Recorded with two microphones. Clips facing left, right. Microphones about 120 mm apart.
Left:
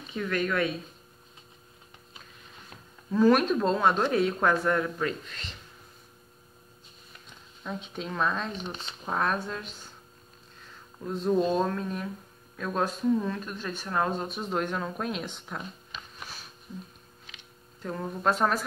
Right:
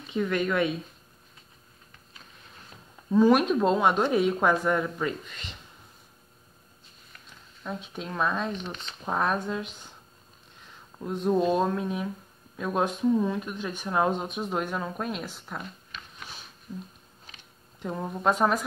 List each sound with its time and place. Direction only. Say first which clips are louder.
0.1 s speech: right 3 dB; 20° right (ahead or behind)
3.1 s speech: right 1 dB; 15° right (ahead or behind)
7.6 s speech: even; 5° right (ahead or behind)
11.1 s speech: right 1 dB; 10° right (ahead or behind)
17.8 s speech: right 2 dB; 10° right (ahead or behind)